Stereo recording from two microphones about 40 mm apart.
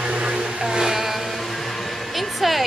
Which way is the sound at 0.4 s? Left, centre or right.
Centre.